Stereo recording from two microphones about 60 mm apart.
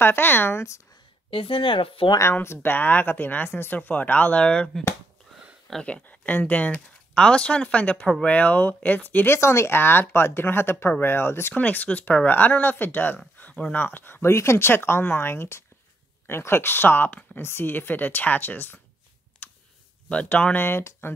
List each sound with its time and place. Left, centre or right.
0.0 s speech: left
2.4 s speech: left; by 4.6 s centre
5.9 s speech: left
9.4 s speech: left
11.5 s speech: left
13.4 s a sound: left
13.7 s speech: left
14.3 s speech: left
20.1 s speech: left
20.6 s speech: left